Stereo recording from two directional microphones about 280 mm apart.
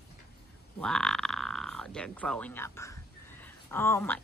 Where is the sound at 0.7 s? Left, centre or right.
Centre.